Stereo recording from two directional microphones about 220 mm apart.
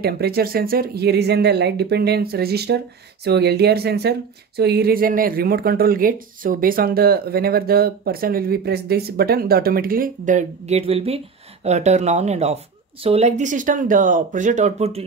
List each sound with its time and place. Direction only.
0.0 s speech: 45° right (ahead or behind); by 15.0 s 30° right (ahead or behind)